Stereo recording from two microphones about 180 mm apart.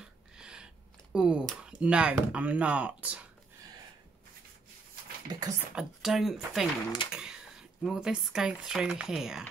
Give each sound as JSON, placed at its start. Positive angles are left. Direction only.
{"t": 0.0, "sound": "a sound", "side_deg": -5}
{"t": 1.1, "sound": "speech", "side_deg": -5}
{"t": 5.3, "sound": "speech", "side_deg": -25}
{"t": 5.8, "sound": "speech", "side_deg": 0}